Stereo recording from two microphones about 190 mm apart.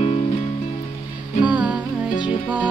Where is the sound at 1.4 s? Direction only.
5° right (ahead or behind).